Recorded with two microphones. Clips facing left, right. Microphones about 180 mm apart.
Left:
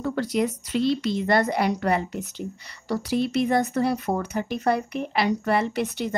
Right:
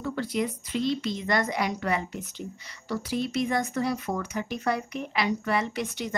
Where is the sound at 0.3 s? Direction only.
75° left (ahead or behind).